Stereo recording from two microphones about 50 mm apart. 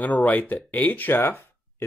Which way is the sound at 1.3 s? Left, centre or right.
Left.